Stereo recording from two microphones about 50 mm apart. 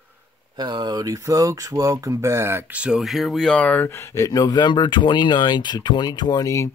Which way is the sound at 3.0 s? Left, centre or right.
Centre.